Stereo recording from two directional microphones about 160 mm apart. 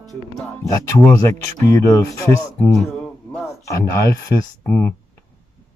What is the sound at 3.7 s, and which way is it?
Speech, 20° left (ahead or behind).